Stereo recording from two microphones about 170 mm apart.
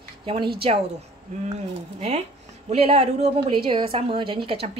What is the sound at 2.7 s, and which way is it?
A woman's voice, 35° right (ahead or behind).